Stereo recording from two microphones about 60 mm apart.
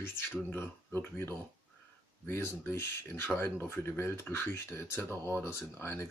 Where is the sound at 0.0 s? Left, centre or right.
Left.